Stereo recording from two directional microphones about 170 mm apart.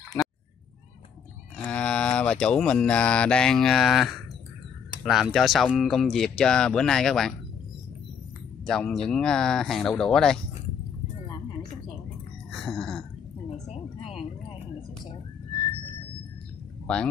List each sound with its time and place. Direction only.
0.2 s a sound: 10° left (ahead or behind)
1.6 s mantra: 5° left (ahead or behind)
5.0 s speech: centre (ahead or behind)
8.6 s speech: 5° left (ahead or behind)
12.4 s a sound: centre (ahead or behind)
13.7 s music: 35° left (ahead or behind)
16.8 s a man's voice: 5° left (ahead or behind)